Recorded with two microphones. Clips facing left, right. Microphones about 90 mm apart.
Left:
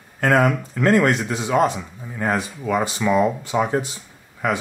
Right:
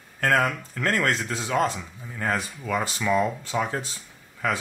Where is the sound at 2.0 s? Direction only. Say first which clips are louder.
Left 4 dB; 15° left (ahead or behind).